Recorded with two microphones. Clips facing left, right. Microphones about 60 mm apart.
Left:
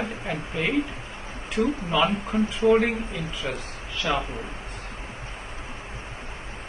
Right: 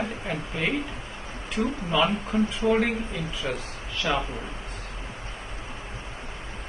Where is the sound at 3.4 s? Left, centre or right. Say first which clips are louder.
Right 1 dB; left.